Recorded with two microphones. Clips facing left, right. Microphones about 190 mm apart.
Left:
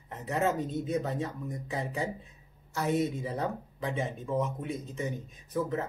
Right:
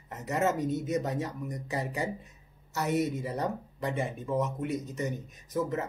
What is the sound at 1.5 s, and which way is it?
Speech, 5° right (ahead or behind).